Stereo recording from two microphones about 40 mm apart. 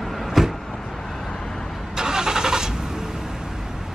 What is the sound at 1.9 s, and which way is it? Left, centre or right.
Vehicle, centre.